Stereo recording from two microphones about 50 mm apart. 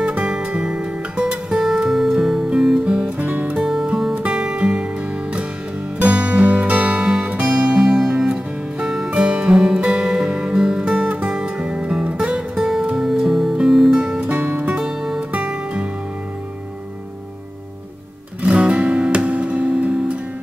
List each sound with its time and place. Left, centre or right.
0.0 s music: right
3.2 s music: right
3.5 s music: centre
5.9 s music: right
7.8 s music: centre
11.1 s music: right
14.2 s music: right
14.7 s music: centre
15.3 s music: right
18.4 s music: right